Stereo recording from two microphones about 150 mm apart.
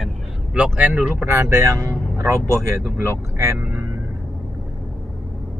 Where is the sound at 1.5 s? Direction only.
20° right (ahead or behind).